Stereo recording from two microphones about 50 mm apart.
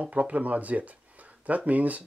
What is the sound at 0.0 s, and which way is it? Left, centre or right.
Speech, right.